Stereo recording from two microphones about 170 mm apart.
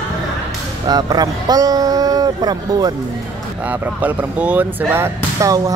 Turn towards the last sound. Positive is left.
turn(degrees=-20)  # may be behind; listen again after turning